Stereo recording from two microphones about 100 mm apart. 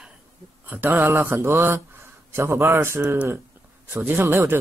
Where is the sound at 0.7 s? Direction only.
20° right (ahead or behind).